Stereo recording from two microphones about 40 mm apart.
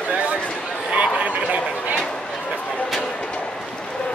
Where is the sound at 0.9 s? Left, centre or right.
Right.